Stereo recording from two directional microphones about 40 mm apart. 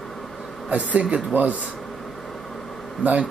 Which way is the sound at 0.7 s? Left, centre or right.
Right.